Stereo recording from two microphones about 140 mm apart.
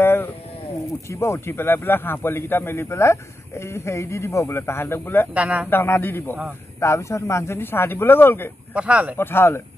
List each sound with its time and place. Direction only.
0.0 s a sound: 15° left (ahead or behind)
1.0 s speech: 20° left (ahead or behind)
5.3 s speech: 10° right (ahead or behind)
5.7 s speech: 15° left (ahead or behind)
8.7 s speech: 10° right (ahead or behind)
9.1 s speech: 15° left (ahead or behind)